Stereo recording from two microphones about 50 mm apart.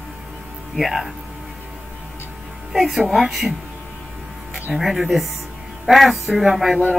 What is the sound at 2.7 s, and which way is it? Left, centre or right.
Speech, centre.